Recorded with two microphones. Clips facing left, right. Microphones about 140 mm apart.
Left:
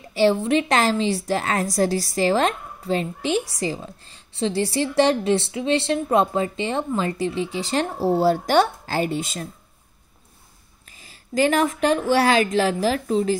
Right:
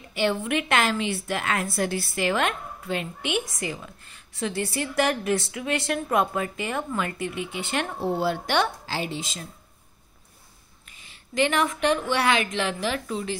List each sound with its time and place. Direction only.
0.1 s a woman's voice: 35° left (ahead or behind); by 9.5 s 55° left (ahead or behind)
10.9 s a woman's voice: 35° left (ahead or behind)